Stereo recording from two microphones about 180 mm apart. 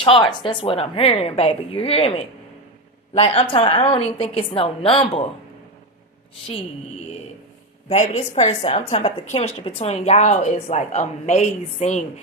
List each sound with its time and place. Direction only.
0.0 s a woman's voice: 30° left (ahead or behind)
7.9 s a woman's voice: 40° left (ahead or behind)